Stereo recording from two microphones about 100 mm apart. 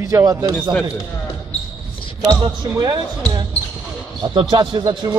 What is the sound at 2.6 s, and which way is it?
Speech, 45° right (ahead or behind).